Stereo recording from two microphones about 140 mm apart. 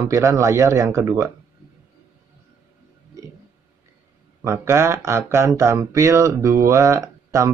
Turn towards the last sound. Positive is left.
turn(degrees=-25)  # may be behind; listen again after turning